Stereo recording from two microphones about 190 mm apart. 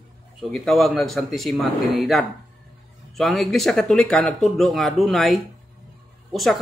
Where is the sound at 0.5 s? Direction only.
Centre (ahead or behind).